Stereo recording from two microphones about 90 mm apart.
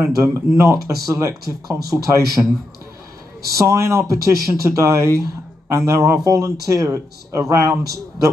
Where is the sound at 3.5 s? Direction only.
35° right (ahead or behind).